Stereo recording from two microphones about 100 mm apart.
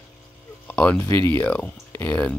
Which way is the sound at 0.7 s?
15° left (ahead or behind).